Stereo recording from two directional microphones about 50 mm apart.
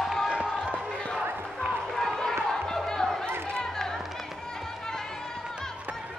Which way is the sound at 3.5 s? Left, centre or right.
Centre.